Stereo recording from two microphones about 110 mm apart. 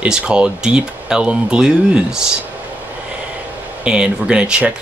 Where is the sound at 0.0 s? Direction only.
10° right (ahead or behind).